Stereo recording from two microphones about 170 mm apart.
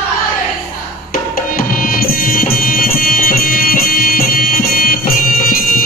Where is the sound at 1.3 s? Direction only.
60° left (ahead or behind).